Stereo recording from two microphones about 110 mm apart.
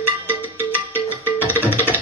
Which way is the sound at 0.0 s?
20° right (ahead or behind).